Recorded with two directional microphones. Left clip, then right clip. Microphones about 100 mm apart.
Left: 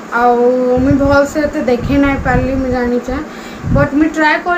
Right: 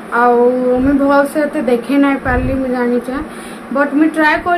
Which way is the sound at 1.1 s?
25° right (ahead or behind).